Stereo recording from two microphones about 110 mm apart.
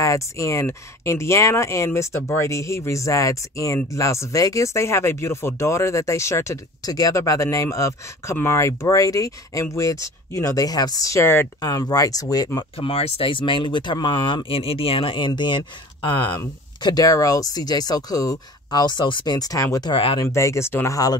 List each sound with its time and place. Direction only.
0.0 s speech: 30° left (ahead or behind)
11.6 s speech: 35° left (ahead or behind)
12.7 s speech: 60° left (ahead or behind); by 19.9 s 30° left (ahead or behind)
19.9 s speech: 55° left (ahead or behind)
20.2 s speech: 25° left (ahead or behind)